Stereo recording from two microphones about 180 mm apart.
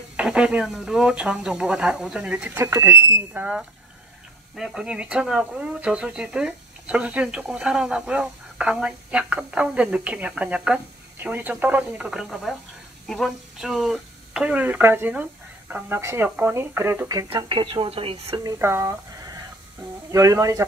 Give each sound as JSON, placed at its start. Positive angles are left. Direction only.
{"t": 0.1, "sound": "speech", "side_deg": -5}
{"t": 17.3, "sound": "speech", "side_deg": -30}
{"t": 18.4, "sound": "speech", "side_deg": -15}